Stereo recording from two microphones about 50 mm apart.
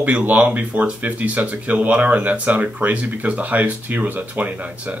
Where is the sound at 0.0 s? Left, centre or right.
Right.